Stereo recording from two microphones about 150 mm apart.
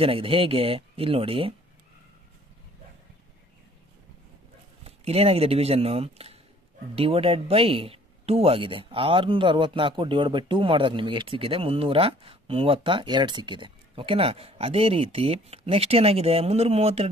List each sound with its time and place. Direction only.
0.0 s speech: 35° right (ahead or behind)
4.8 s speech: 40° right (ahead or behind)